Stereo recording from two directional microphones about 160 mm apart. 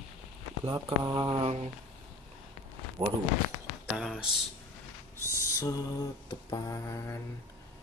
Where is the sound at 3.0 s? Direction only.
35° right (ahead or behind).